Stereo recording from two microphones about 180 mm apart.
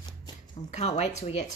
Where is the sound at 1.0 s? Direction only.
40° left (ahead or behind).